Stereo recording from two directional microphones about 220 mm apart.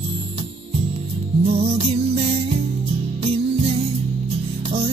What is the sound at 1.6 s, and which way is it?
Music, 25° right (ahead or behind).